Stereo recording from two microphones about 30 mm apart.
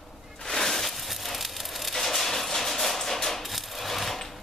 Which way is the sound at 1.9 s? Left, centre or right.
Centre.